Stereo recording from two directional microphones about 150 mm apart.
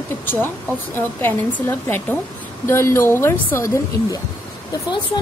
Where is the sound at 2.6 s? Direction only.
20° left (ahead or behind).